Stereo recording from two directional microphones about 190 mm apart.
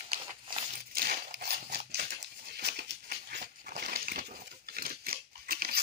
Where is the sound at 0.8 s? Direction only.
50° right (ahead or behind).